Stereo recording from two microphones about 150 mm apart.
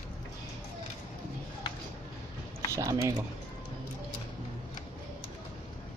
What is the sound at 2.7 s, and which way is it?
Speech, 20° right (ahead or behind).